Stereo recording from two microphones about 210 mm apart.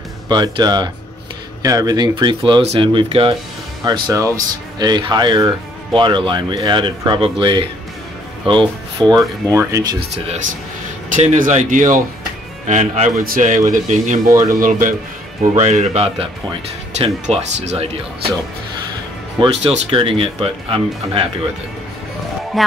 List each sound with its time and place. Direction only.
0.3 s speech: 20° right (ahead or behind)
9.1 s speech: 15° right (ahead or behind)
9.9 s speech: 30° right (ahead or behind)
19.4 s speech: 30° right (ahead or behind)
22.5 s speech: centre (ahead or behind)